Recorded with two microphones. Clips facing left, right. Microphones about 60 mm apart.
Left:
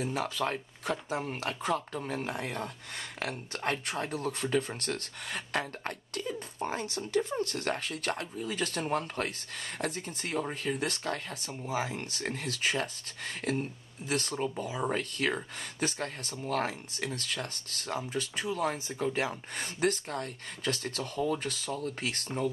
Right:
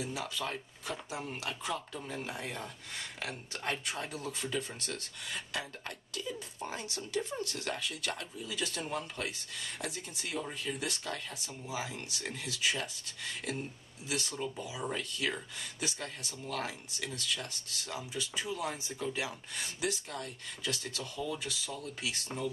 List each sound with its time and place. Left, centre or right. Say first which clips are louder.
0.0 s speech: left 6 dB; left